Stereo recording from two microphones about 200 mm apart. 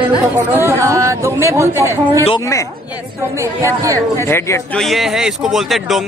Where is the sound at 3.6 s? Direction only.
15° right (ahead or behind).